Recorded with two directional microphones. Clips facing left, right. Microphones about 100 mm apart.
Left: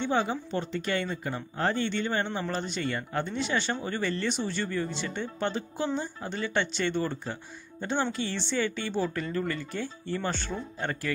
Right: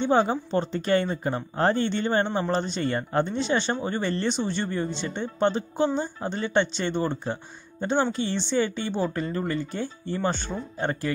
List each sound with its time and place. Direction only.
0.0 s speech: 35° right (ahead or behind)